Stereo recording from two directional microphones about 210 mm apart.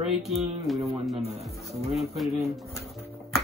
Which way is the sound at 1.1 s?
30° right (ahead or behind).